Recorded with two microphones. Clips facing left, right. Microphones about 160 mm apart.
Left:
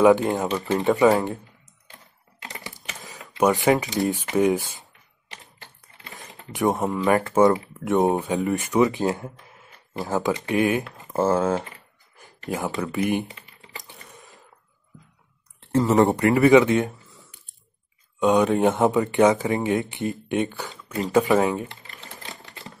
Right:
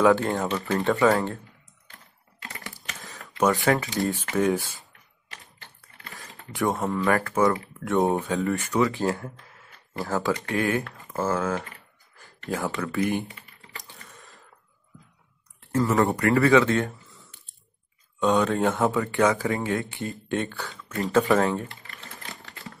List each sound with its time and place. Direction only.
0.0 s speech: 20° left (ahead or behind)
3.1 s speech: 15° left (ahead or behind)
12.2 s typing: 20° left (ahead or behind)
15.7 s speech: 25° left (ahead or behind)
16.9 s a sound: centre (ahead or behind)
18.2 s speech: 15° left (ahead or behind)
21.1 s typing: 15° left (ahead or behind)